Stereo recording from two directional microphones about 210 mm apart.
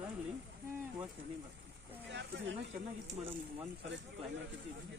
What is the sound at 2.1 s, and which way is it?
Speech, 55° right (ahead or behind).